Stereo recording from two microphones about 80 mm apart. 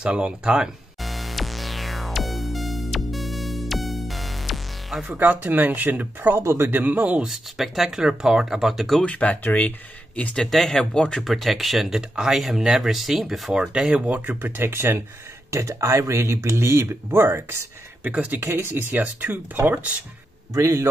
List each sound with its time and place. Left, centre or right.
0.0 s music: centre
5.0 s speech: right
7.2 s speech: centre
9.0 s speech: centre
10.3 s speech: centre
11.2 s speech: centre
18.4 s speech: right
20.5 s speech: right